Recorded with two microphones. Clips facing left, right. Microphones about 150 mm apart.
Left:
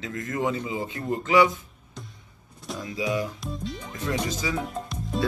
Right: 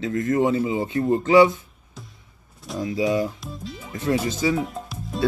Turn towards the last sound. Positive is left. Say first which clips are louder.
# left 1 dB
turn(degrees=0)  # may be behind; listen again after turning